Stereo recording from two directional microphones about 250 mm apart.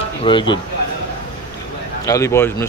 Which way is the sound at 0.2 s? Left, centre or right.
Centre.